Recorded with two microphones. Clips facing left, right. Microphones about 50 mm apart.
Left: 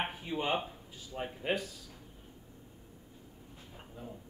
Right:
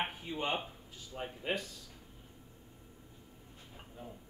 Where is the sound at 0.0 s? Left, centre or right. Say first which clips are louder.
Left 2 dB; centre.